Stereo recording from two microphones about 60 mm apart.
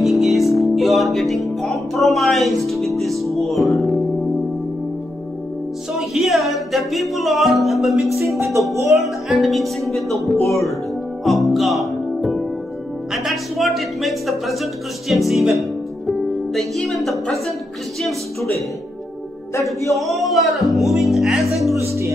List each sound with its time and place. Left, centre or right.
0.0 s music: centre
5.9 s music: centre
8.9 s speech: centre
11.2 s music: centre
13.1 s speech: centre
16.2 s music: centre
16.9 s speech: centre
19.5 s music: left
19.9 s speech: centre
21.8 s speech: right